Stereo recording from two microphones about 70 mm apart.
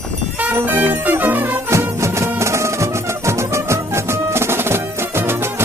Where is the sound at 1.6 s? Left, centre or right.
Right.